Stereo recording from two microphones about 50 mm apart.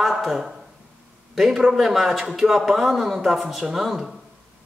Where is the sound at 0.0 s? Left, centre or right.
Centre.